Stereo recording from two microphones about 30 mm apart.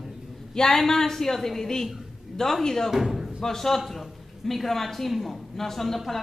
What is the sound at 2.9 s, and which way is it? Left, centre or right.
Speech, centre.